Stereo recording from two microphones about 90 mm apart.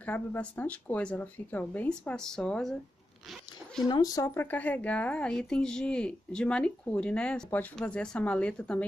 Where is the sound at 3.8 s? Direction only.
45° left (ahead or behind).